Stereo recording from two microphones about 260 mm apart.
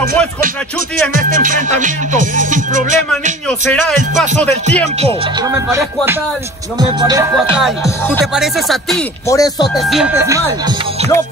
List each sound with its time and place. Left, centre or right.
1.1 s music: right
5.5 s speech: centre
8.4 s speech: centre
9.3 s speech: centre
9.8 s speech: centre